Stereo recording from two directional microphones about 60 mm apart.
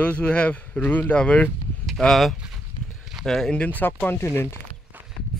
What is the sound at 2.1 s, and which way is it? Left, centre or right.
Speech, centre.